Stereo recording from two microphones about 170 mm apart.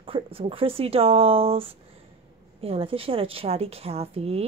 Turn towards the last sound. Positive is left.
turn(degrees=-35)  # may be behind; listen again after turning